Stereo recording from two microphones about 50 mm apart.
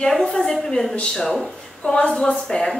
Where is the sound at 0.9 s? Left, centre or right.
Centre.